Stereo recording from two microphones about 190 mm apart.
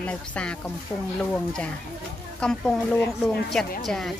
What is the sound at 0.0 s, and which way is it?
A woman's voice, 5° left (ahead or behind).